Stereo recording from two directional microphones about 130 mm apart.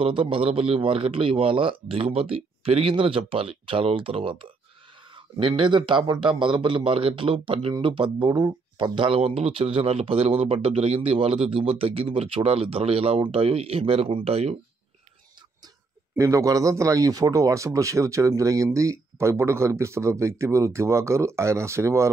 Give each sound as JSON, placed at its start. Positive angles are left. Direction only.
{"t": 0.0, "sound": "a man's voice", "side_deg": -40}
{"t": 16.2, "sound": "a man's voice", "side_deg": -25}